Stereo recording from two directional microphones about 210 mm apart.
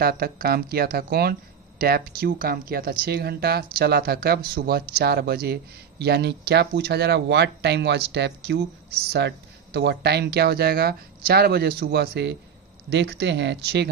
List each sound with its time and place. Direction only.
0.0 s speech: 45° right (ahead or behind)